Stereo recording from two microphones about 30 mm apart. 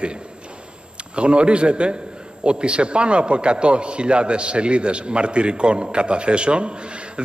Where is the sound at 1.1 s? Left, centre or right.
Right.